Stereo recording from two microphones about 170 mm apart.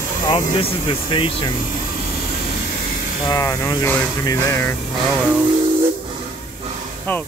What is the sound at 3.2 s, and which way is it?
Speech, 20° left (ahead or behind).